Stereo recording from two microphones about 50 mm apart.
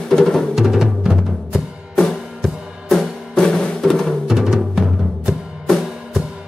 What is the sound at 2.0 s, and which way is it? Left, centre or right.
Music, centre.